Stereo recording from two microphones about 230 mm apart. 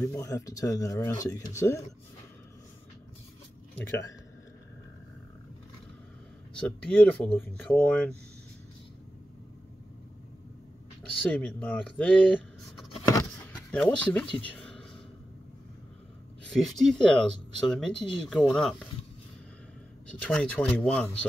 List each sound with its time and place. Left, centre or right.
0.0 s speech: centre
6.5 s speech: centre
11.2 s speech: centre
13.0 s a sound: centre
13.5 s speech: centre
16.5 s speech: centre
20.1 s speech: centre